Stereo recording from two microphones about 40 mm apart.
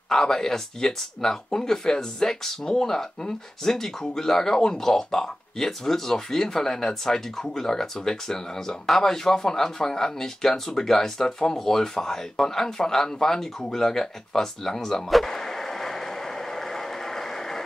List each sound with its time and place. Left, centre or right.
0.1 s speech: centre